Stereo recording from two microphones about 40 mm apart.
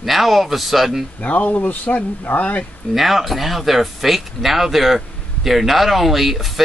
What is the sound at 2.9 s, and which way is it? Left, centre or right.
Speech, centre.